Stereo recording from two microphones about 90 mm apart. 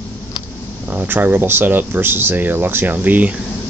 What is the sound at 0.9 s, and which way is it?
Speech, 20° right (ahead or behind).